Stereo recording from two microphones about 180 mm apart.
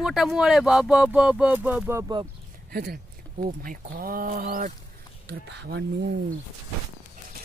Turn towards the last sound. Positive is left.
turn(degrees=-70)  # may be behind; listen again after turning